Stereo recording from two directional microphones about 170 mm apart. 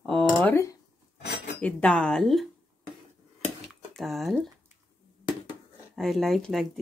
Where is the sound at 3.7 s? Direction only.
Centre (ahead or behind).